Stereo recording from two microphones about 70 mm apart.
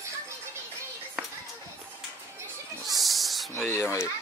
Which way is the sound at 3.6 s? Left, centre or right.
Left.